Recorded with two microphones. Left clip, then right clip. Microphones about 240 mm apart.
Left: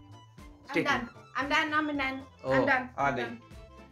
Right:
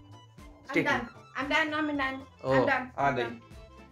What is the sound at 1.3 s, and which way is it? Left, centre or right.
A woman's voice, left.